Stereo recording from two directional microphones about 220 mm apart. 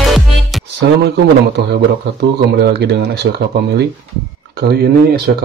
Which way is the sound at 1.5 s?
50° right (ahead or behind).